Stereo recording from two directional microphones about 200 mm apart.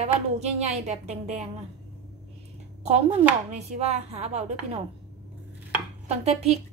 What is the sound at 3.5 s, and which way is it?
A woman's voice, 35° right (ahead or behind).